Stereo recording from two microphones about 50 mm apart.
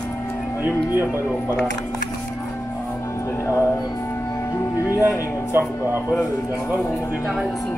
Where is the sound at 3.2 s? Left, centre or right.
Left.